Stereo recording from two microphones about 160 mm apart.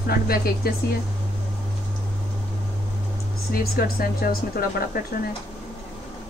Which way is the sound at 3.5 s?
65° left (ahead or behind).